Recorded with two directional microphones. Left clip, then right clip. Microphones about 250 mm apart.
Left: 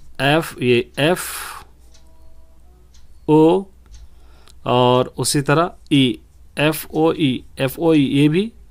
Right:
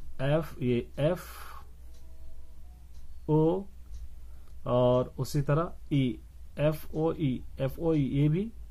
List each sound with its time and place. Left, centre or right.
0.2 s speech: left
3.3 s speech: left
4.6 s speech: left